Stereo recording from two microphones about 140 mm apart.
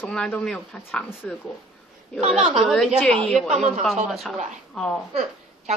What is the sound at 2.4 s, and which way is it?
A woman's voice, 5° right (ahead or behind).